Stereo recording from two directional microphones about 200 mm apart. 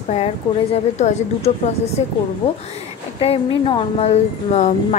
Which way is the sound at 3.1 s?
25° left (ahead or behind).